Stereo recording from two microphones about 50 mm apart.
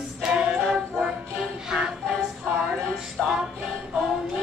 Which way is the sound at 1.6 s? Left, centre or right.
Centre.